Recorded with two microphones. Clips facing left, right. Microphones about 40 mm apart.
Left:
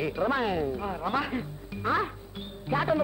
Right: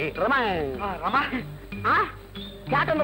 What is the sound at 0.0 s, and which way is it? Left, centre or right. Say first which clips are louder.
A man's voice: right 4 dB; right.